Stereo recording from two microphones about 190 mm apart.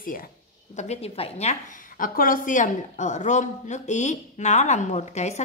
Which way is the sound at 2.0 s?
45° left (ahead or behind).